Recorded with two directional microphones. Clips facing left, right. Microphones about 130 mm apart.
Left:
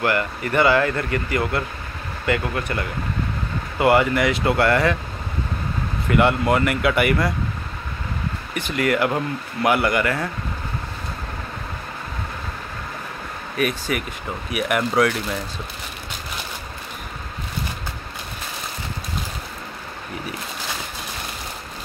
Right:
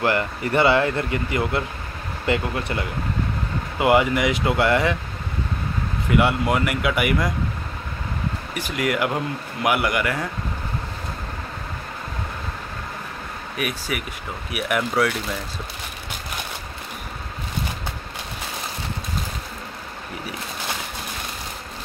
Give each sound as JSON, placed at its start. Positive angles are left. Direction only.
{"t": 0.0, "sound": "speech", "side_deg": -25}
{"t": 6.0, "sound": "speech", "side_deg": -5}
{"t": 8.5, "sound": "speech", "side_deg": -10}
{"t": 13.6, "sound": "speech", "side_deg": -5}